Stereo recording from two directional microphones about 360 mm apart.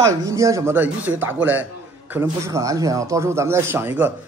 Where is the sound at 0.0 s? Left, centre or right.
Centre.